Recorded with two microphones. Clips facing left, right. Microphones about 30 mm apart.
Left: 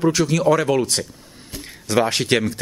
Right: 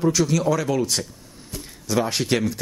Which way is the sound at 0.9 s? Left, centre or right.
Centre.